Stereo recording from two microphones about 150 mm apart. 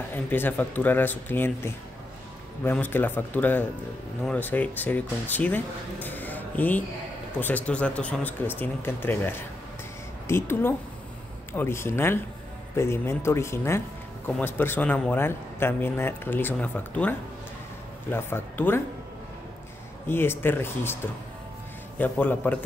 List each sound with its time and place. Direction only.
0.1 s speech: 10° left (ahead or behind)
18.1 s speech: 15° left (ahead or behind)
20.1 s speech: 15° left (ahead or behind)